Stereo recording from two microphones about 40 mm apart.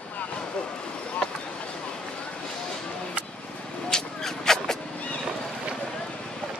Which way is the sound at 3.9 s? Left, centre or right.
Centre.